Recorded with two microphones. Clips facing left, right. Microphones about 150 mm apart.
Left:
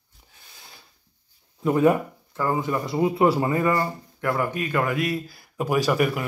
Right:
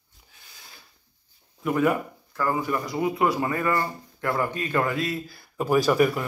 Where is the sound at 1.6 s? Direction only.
30° left (ahead or behind).